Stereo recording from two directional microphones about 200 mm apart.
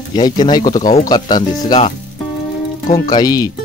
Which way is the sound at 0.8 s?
40° left (ahead or behind).